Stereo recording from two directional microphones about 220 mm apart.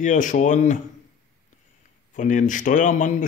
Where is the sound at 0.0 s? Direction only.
35° left (ahead or behind).